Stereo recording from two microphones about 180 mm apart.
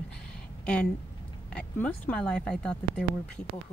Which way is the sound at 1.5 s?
5° left (ahead or behind).